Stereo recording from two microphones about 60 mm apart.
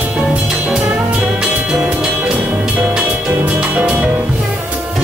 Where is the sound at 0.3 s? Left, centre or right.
Right.